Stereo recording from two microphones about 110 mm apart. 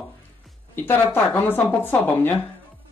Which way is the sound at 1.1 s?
20° left (ahead or behind).